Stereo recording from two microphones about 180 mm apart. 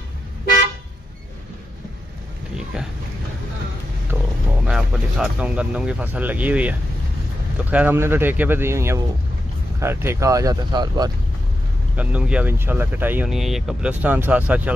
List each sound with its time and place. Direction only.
2.5 s oink: 5° right (ahead or behind)
4.1 s roaring cats: 5° right (ahead or behind)
4.6 s speech: 5° right (ahead or behind); by 11.1 s 25° right (ahead or behind)
12.0 s speech: 5° right (ahead or behind)